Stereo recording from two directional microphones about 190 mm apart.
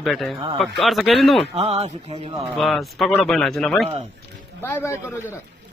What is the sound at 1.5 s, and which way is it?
Speech, 35° right (ahead or behind).